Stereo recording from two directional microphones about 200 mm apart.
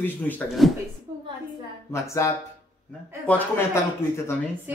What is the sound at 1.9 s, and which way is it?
Speech, 15° left (ahead or behind).